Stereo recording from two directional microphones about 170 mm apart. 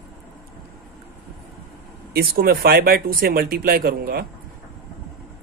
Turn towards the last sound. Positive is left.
turn(degrees=-65)  # may be behind; listen again after turning